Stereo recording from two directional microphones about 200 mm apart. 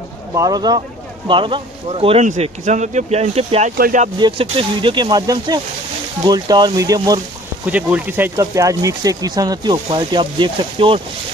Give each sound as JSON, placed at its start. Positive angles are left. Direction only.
{"t": 0.3, "sound": "speech", "side_deg": -20}
{"t": 3.7, "sound": "speech", "side_deg": -45}
{"t": 4.2, "sound": "speech", "side_deg": -25}
{"t": 7.6, "sound": "speech", "side_deg": -5}